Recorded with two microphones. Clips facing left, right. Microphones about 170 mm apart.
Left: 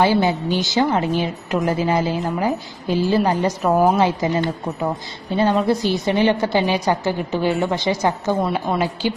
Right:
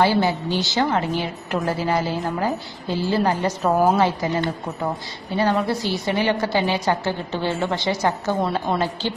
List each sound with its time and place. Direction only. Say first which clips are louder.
0.0 s a woman's voice: left 2 dB; 20° left (ahead or behind)
5.3 s a woman's voice: left 3 dB; 20° left (ahead or behind)